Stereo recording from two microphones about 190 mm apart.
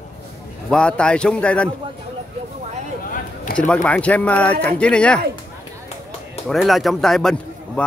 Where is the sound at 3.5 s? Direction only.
50° left (ahead or behind).